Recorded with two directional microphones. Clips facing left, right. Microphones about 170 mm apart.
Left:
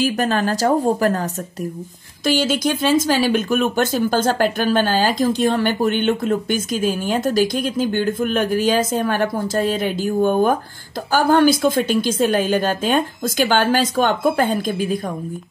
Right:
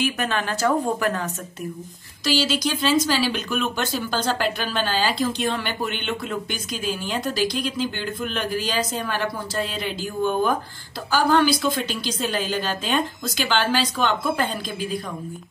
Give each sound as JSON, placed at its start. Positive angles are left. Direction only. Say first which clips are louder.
{"t": 0.0, "sound": "speech", "louder": "left 6 dB", "side_deg": 35}
{"t": 2.2, "sound": "speech", "louder": "left 4 dB", "side_deg": 55}